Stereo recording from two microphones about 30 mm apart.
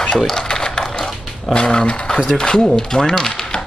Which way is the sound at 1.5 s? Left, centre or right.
Left.